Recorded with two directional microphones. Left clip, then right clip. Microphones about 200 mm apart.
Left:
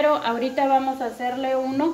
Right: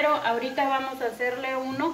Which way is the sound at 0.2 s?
60° left (ahead or behind).